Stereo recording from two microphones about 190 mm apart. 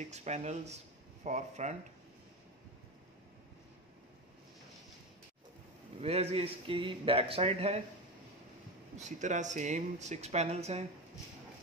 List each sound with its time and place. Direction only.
0.1 s speech: 35° right (ahead or behind)
5.9 s speech: 35° right (ahead or behind)
8.9 s speech: 40° right (ahead or behind)